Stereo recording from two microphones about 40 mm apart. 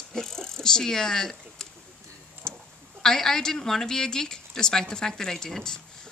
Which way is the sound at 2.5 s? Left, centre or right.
Centre.